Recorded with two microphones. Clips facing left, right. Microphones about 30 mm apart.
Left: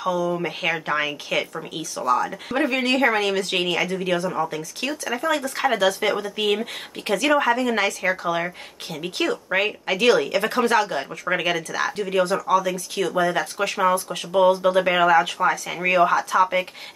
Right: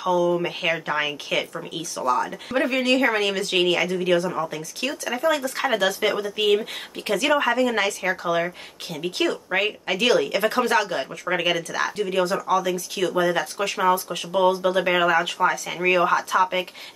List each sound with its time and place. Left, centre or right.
0.0 s speech: centre